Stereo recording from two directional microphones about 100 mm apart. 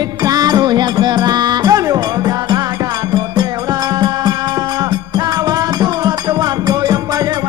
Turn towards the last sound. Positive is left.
turn(degrees=-40)  # may be behind; listen again after turning